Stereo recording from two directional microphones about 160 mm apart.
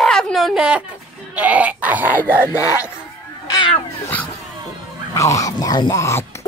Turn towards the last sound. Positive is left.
turn(degrees=20)  # may be behind; listen again after turning